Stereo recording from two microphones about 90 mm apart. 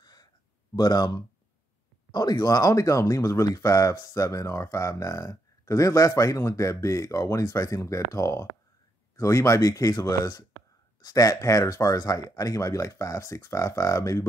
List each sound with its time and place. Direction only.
0.0 s gasp: 50° left (ahead or behind)
0.7 s speech: 50° left (ahead or behind)